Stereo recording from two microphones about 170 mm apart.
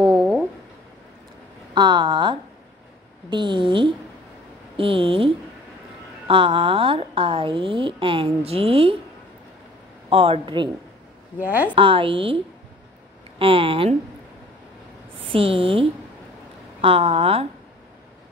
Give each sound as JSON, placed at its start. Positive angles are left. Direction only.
{"t": 0.0, "sound": "speech", "side_deg": -5}
{"t": 1.7, "sound": "a woman's voice", "side_deg": -25}
{"t": 10.0, "sound": "a woman's voice", "side_deg": -35}
{"t": 11.3, "sound": "a woman's voice", "side_deg": -10}
{"t": 11.7, "sound": "a woman's voice", "side_deg": -30}
{"t": 13.4, "sound": "a woman's voice", "side_deg": -30}
{"t": 15.3, "sound": "a woman's voice", "side_deg": -35}